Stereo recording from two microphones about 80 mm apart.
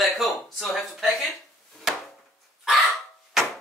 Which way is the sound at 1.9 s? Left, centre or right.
Centre.